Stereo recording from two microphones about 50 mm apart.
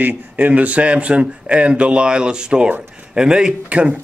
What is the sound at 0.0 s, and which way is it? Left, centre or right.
A man's voice, right.